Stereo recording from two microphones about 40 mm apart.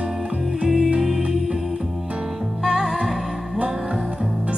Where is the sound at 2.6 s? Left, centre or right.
Centre.